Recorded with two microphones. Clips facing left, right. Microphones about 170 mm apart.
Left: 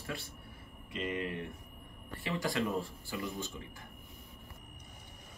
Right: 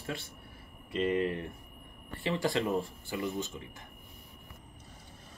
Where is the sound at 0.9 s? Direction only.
35° right (ahead or behind).